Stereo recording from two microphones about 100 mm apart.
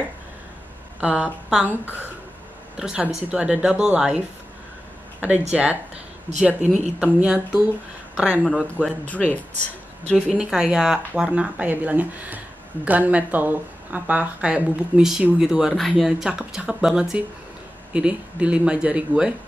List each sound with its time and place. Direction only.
1.0 s speech: 10° right (ahead or behind)
5.2 s speech: 15° right (ahead or behind)
9.0 s speech: 15° left (ahead or behind)
10.3 s speech: 5° right (ahead or behind)